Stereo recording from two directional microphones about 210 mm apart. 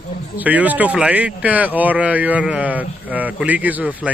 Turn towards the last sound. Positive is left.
turn(degrees=-5)  # may be behind; listen again after turning